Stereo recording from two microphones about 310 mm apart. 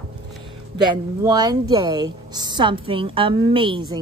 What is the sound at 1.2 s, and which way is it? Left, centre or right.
A woman's voice, centre.